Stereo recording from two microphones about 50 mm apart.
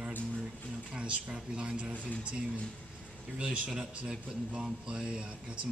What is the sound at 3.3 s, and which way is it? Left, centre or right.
Speech, right.